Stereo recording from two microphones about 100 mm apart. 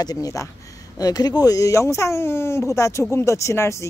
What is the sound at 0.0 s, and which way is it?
A woman's voice, 35° left (ahead or behind).